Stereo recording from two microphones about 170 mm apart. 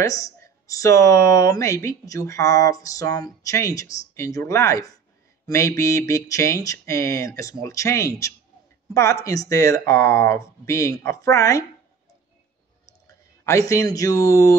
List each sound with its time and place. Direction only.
0.0 s speech: 20° left (ahead or behind)
13.0 s speech: 20° left (ahead or behind)